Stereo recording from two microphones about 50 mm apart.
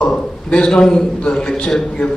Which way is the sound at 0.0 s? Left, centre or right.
Centre.